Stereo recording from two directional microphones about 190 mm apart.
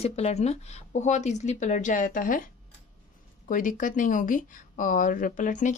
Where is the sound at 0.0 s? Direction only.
35° left (ahead or behind).